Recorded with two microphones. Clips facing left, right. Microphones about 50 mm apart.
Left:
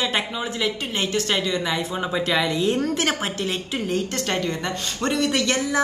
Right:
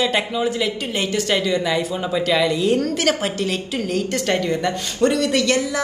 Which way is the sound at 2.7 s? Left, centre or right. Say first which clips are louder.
Right 4 dB; left.